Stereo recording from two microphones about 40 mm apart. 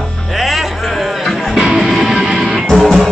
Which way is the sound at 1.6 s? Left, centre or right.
Centre.